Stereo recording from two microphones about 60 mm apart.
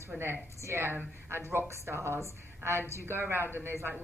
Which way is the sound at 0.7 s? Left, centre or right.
Right.